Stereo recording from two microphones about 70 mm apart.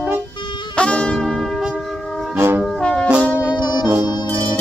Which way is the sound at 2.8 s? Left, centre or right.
Centre.